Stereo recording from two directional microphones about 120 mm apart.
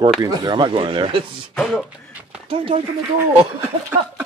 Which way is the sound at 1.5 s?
5° left (ahead or behind).